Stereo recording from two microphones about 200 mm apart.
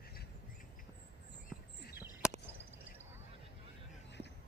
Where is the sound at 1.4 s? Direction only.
50° left (ahead or behind).